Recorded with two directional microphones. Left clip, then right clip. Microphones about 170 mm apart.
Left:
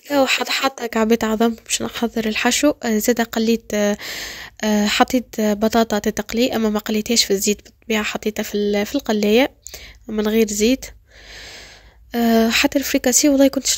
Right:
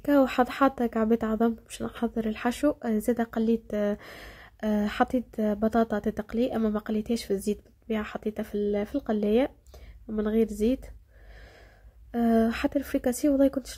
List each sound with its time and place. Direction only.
0.1 s speech: 20° left (ahead or behind)
12.1 s speech: 20° left (ahead or behind)